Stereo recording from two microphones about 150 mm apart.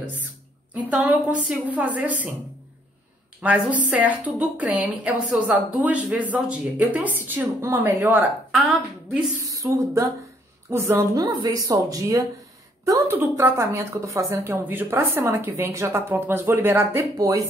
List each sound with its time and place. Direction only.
0.0 s a sound: 10° right (ahead or behind)
0.7 s a woman's voice: 10° right (ahead or behind)
3.3 s a woman's voice: 10° right (ahead or behind)
8.5 s a woman's voice: centre (ahead or behind)
9.4 s a woman's voice: 20° right (ahead or behind)